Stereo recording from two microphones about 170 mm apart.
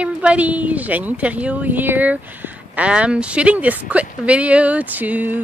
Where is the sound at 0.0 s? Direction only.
10° right (ahead or behind).